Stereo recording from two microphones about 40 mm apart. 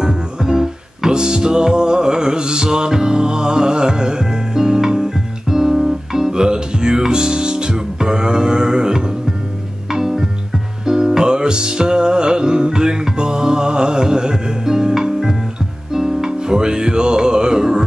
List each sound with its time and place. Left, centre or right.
0.0 s music: centre